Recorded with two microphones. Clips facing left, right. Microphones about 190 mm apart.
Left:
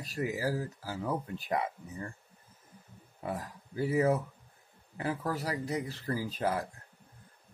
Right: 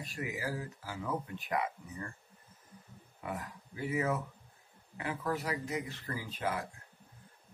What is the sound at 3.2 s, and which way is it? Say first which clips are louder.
Speech: left 3 dB; 35° left (ahead or behind).